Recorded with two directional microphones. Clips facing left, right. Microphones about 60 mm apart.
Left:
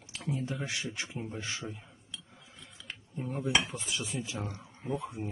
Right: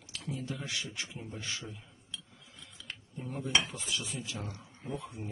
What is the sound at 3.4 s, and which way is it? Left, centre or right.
Dishes, centre.